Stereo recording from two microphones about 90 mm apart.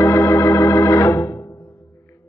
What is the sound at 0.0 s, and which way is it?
Organ, 35° left (ahead or behind).